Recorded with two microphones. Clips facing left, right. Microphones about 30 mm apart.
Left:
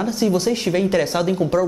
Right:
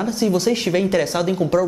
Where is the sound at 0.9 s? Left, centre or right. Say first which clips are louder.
Even; centre.